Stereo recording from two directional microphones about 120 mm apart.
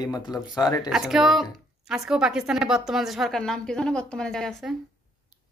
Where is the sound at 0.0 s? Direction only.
35° left (ahead or behind).